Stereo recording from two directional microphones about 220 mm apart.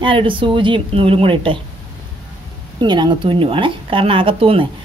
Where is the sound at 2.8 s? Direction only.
20° right (ahead or behind).